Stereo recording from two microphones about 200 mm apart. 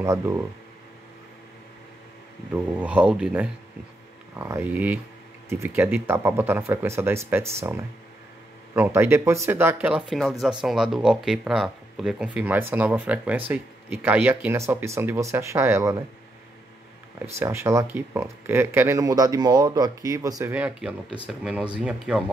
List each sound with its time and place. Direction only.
0.0 s speech: 15° right (ahead or behind)
2.5 s speech: 10° right (ahead or behind)
8.7 s speech: 10° right (ahead or behind)
17.4 s speech: 15° right (ahead or behind)